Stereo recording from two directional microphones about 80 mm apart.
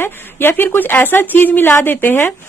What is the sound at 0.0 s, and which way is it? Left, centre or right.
Speech, left.